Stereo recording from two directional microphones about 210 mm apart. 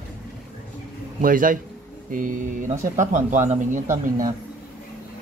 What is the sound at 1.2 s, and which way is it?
Speech, 40° right (ahead or behind).